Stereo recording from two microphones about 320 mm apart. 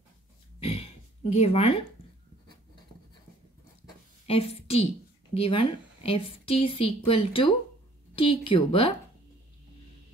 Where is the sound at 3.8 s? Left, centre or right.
Centre.